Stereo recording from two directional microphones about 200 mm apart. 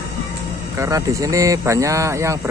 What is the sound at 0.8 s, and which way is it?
Speech, 15° right (ahead or behind).